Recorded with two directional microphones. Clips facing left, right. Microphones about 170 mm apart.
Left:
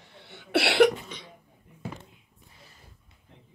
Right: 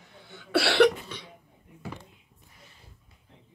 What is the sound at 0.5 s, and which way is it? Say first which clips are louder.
Cough: even; 20° left (ahead or behind).